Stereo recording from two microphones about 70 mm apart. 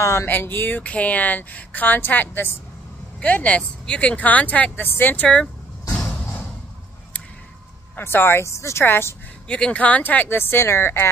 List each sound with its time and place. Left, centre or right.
0.0 s speech: left
0.3 s speech: left
5.2 s speech: centre
7.9 s speech: left
8.8 s speech: left
9.5 s speech: centre; by 11.1 s left